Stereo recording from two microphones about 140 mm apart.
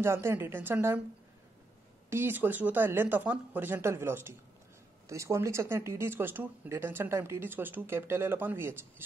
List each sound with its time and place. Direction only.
0.0 s speech: 15° right (ahead or behind)
2.0 s speech: 15° right (ahead or behind)